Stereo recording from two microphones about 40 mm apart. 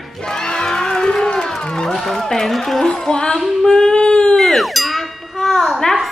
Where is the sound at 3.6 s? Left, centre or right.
Centre.